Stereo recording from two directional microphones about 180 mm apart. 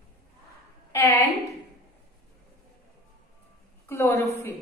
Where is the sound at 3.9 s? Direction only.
15° left (ahead or behind).